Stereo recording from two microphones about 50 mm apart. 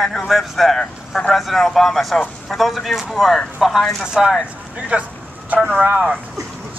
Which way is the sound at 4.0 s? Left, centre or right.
Centre.